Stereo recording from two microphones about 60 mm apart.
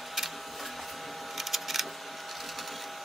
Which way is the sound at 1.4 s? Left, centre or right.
Centre.